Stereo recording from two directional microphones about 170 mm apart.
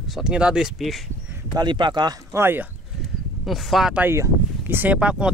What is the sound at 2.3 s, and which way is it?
Speech, 15° right (ahead or behind).